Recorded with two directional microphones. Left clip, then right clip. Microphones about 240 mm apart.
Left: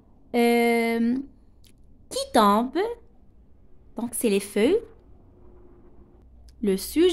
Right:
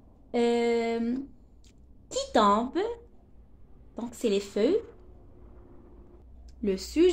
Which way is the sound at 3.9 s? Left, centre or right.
Left.